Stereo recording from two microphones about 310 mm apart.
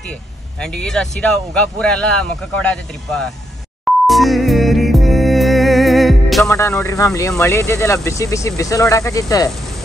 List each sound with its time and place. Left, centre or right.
0.6 s speech: centre
3.8 s music: centre